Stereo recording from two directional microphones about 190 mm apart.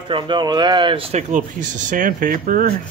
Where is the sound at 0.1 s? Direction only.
20° right (ahead or behind); by 2.7 s 45° right (ahead or behind).